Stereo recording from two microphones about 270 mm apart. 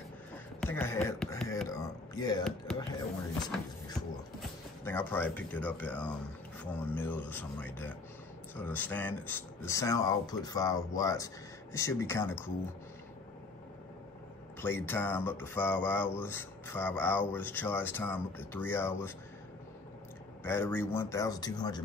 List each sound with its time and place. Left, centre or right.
0.6 s a sound: centre
3.5 s music: centre
6.6 s speech: centre
14.6 s speech: centre
20.4 s speech: centre